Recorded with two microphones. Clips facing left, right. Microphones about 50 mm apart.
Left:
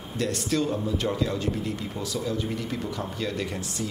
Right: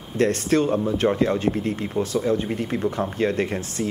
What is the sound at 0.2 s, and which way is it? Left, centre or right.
Speech, right.